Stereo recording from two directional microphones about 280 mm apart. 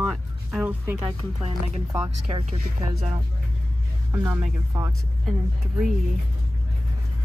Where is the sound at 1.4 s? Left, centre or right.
Centre.